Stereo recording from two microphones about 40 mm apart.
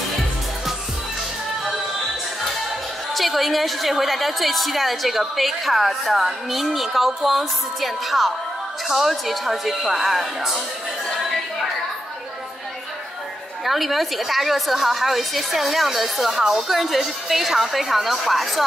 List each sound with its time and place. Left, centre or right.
3.2 s a woman's voice: centre
13.7 s a woman's voice: centre